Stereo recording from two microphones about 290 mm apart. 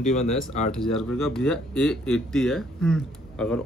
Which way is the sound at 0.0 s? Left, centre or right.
Left.